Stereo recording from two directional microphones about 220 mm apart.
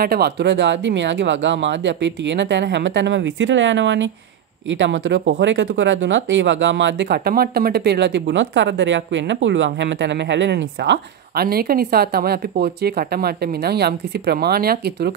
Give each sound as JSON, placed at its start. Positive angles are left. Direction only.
{"t": 0.0, "sound": "speech", "side_deg": -45}